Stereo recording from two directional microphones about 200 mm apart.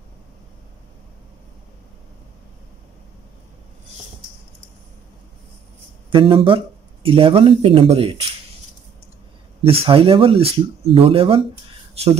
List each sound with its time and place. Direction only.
6.1 s speech: 25° right (ahead or behind)
9.6 s speech: 30° right (ahead or behind)